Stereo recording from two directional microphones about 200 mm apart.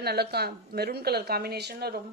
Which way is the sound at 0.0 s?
55° right (ahead or behind).